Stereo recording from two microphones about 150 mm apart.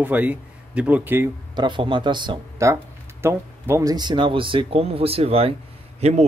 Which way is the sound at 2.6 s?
20° right (ahead or behind).